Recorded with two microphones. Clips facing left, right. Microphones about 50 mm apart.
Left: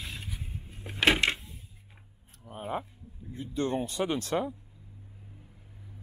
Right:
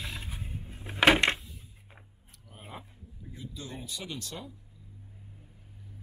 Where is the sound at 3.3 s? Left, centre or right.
Left.